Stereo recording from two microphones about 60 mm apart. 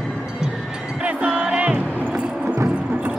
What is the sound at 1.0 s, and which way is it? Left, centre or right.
Music, right.